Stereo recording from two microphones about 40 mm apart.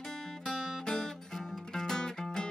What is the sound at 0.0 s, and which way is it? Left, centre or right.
Music, centre.